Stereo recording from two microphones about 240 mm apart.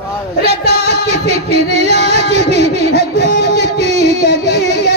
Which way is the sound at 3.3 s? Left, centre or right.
Right.